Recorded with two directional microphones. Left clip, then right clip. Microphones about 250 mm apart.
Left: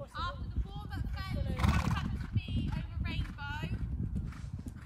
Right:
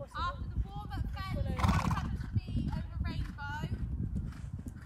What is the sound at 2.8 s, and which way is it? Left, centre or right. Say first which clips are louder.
Clip-clop: left 2 dB; centre.